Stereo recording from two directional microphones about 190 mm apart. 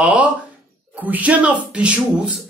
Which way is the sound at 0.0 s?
5° right (ahead or behind).